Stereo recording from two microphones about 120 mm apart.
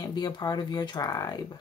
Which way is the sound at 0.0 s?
35° left (ahead or behind).